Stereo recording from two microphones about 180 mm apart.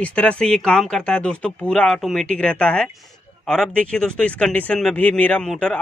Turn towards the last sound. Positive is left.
turn(degrees=5)  # may be behind; listen again after turning